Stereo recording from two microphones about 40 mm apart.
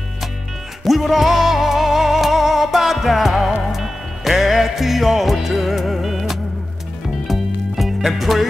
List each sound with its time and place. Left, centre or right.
0.8 s music: centre